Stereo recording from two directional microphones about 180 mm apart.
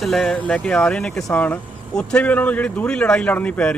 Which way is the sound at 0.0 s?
Centre (ahead or behind).